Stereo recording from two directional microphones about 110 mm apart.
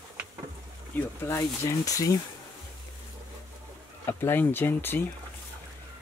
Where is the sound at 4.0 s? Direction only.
20° left (ahead or behind).